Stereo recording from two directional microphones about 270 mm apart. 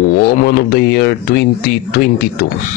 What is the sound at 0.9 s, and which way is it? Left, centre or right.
Speech, left.